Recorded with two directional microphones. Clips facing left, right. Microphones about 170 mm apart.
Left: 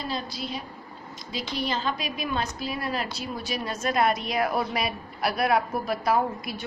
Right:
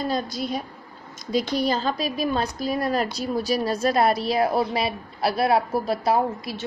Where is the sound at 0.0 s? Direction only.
45° right (ahead or behind).